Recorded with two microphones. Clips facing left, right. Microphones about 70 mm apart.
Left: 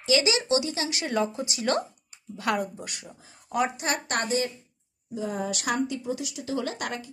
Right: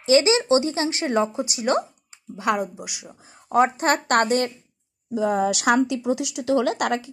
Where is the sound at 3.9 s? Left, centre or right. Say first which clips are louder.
Right 8 dB; right.